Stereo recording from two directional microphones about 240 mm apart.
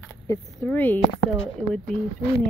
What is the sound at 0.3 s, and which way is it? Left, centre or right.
Speech, centre.